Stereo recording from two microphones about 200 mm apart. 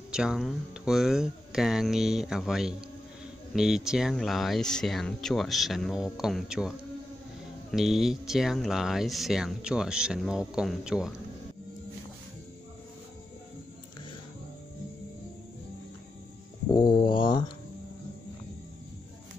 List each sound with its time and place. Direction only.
0.1 s speech: 5° right (ahead or behind)
7.7 s speech: centre (ahead or behind)
16.7 s a sound: 25° left (ahead or behind)